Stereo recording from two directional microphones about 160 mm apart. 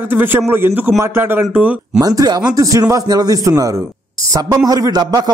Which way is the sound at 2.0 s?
25° right (ahead or behind).